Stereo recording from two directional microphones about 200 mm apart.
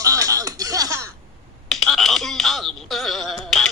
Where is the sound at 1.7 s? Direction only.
Centre (ahead or behind).